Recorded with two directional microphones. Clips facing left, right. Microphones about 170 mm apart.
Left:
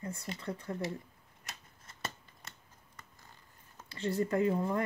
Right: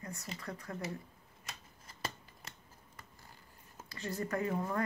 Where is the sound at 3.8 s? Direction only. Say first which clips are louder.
Left 6 dB; 30° left (ahead or behind).